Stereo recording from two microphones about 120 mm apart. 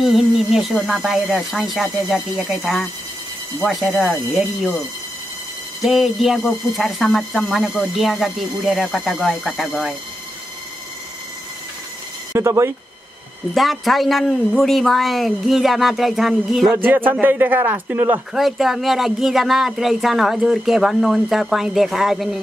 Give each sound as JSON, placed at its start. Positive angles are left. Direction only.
{"t": 0.0, "sound": "speech", "side_deg": 0}
{"t": 5.8, "sound": "speech", "side_deg": 0}
{"t": 12.3, "sound": "speech", "side_deg": -25}
{"t": 13.6, "sound": "speech", "side_deg": 0}
{"t": 16.7, "sound": "a man's voice", "side_deg": -15}
{"t": 18.3, "sound": "speech", "side_deg": 0}